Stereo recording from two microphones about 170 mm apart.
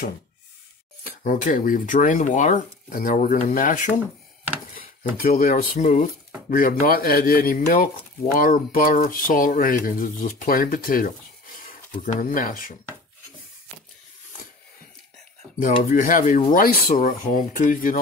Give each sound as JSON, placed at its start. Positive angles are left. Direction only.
{"t": 1.0, "sound": "speech", "side_deg": 55}
{"t": 15.9, "sound": "speech", "side_deg": 50}